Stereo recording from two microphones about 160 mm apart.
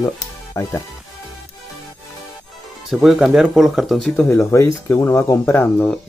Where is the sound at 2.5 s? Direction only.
Centre (ahead or behind).